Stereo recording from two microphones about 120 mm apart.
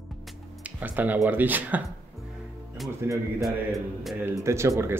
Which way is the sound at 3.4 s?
Centre (ahead or behind).